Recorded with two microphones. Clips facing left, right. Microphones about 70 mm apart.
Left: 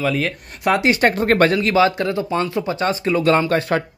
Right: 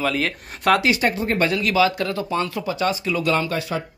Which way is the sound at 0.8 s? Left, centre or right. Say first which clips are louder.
Left 4 dB; left.